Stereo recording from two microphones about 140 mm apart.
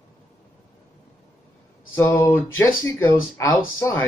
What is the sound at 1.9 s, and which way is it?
Speech, 15° left (ahead or behind).